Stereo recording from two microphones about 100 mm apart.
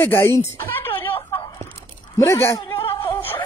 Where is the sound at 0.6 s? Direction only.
20° left (ahead or behind).